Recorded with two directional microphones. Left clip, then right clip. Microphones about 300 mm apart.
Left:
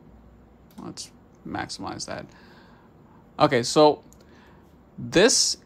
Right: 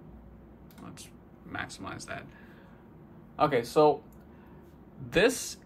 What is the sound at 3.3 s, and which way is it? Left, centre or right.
Speech, left.